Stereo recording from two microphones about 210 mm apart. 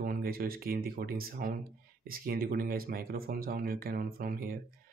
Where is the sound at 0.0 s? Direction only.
45° right (ahead or behind).